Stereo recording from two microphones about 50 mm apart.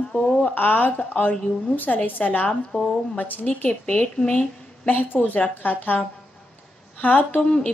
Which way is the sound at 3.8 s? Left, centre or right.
Centre.